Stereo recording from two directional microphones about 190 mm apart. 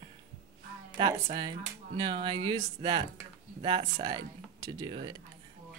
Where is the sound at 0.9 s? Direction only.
30° right (ahead or behind).